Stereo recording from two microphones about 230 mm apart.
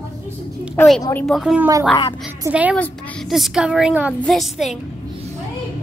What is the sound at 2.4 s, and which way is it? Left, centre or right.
Speech, centre.